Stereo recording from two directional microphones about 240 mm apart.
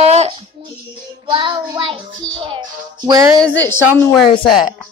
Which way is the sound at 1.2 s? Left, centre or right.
Centre.